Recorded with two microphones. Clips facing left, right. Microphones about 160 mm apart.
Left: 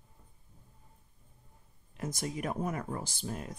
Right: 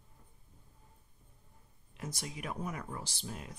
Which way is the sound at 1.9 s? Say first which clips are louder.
Left 7 dB; 45° left (ahead or behind).